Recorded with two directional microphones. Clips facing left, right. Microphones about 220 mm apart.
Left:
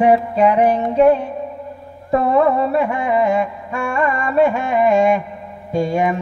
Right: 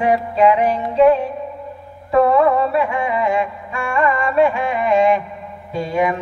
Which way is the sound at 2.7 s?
45° left (ahead or behind).